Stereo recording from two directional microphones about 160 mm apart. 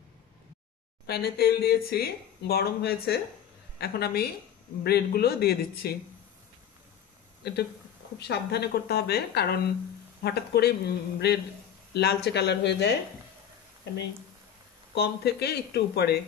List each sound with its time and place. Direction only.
1.0 s speech: 80° left
7.4 s a woman's voice: 90° left
15.0 s a woman's voice: 90° left